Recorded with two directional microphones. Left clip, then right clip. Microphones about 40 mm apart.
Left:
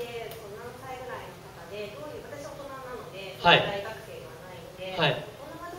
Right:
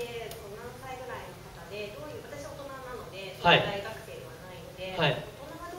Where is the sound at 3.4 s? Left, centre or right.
Centre.